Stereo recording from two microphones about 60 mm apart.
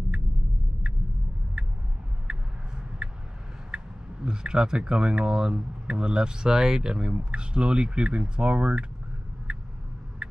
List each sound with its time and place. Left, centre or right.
1.6 s a sound: centre
3.7 s speech: centre
9.5 s vehicle: centre